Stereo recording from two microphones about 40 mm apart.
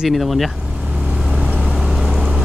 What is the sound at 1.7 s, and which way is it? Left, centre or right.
Vehicle, centre.